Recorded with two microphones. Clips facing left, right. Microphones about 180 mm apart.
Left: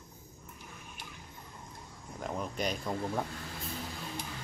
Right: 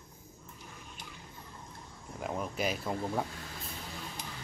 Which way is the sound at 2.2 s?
5° right (ahead or behind).